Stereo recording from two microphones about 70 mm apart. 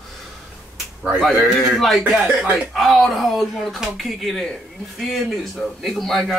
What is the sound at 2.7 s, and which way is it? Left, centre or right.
A man's voice, centre.